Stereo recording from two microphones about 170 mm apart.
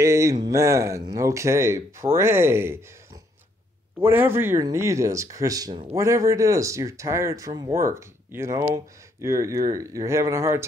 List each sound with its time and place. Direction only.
0.0 s speech: 20° right (ahead or behind)
4.0 s speech: 15° right (ahead or behind)